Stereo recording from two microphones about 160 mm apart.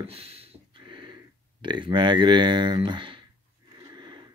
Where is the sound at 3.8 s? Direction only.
25° right (ahead or behind).